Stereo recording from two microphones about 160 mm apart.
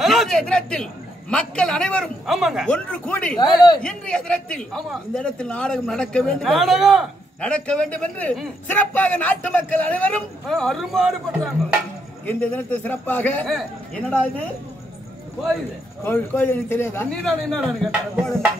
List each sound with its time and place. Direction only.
0.0 s a man's voice: centre (ahead or behind)
3.3 s a man's voice: 25° left (ahead or behind)
3.8 s a man's voice: 5° left (ahead or behind)
16.0 s a man's voice: 10° left (ahead or behind)